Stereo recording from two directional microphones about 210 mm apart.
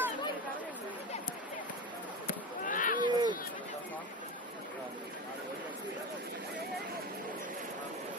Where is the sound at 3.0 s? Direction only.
20° right (ahead or behind).